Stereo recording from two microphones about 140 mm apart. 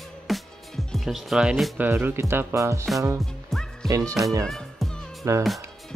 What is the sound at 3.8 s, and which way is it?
Speech, 25° right (ahead or behind).